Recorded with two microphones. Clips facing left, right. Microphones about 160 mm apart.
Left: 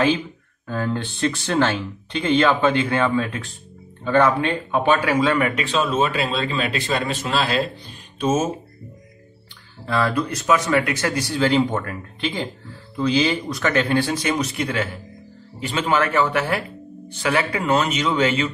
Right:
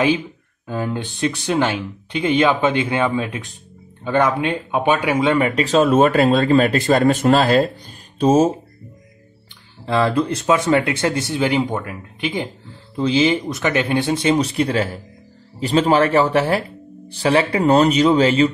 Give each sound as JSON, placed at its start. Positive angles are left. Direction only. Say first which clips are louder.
{"t": 0.7, "sound": "speech", "louder": "right 1 dB", "side_deg": -15}
{"t": 5.5, "sound": "speech", "louder": "right 7 dB", "side_deg": -40}
{"t": 9.8, "sound": "a man's voice", "louder": "right 4 dB", "side_deg": -25}